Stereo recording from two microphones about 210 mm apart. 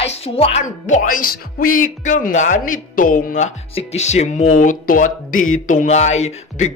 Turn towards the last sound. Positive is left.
turn(degrees=30)  # may be behind; listen again after turning